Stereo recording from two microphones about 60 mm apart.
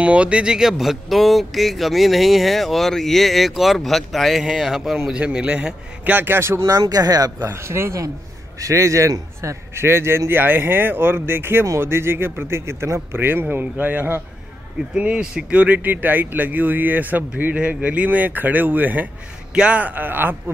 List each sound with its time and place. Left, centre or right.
0.0 s speech: right
6.1 s speech: right
6.6 s speech: right
7.5 s a man's voice: right
8.5 s a man's voice: right
10.4 s speech: right
15.0 s speech: centre
19.5 s speech: centre; by 20.5 s right